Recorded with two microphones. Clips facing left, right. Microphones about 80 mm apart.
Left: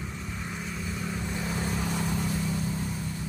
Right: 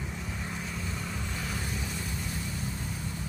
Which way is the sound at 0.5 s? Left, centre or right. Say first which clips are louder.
Left 2 dB; centre.